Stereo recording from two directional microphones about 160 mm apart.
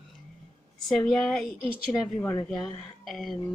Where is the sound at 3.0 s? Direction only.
Centre (ahead or behind).